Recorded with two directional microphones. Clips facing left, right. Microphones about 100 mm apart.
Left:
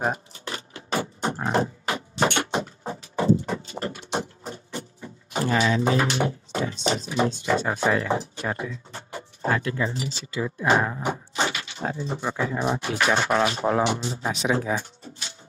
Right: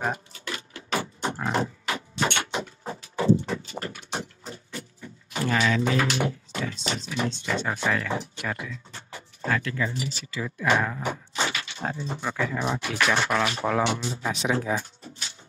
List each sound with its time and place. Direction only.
0.0 s dog: 30° left (ahead or behind)
2.1 s a sound: 35° left (ahead or behind)
4.7 s music: 30° left (ahead or behind)
6.7 s speech: 25° left (ahead or behind)
7.6 s speech: 20° left (ahead or behind)